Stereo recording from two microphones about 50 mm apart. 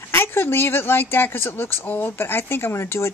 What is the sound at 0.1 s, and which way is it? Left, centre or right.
Speech, left.